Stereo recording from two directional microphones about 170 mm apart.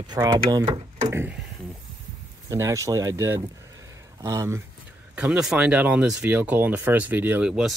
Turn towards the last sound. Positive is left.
turn(degrees=-5)  # may be behind; listen again after turning